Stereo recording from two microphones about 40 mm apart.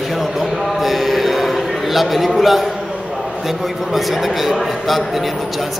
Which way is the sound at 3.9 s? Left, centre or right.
Centre.